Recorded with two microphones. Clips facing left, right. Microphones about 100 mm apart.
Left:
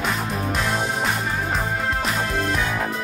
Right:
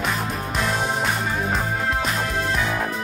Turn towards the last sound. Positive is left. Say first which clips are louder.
# even
turn(degrees=0)  # may be behind; listen again after turning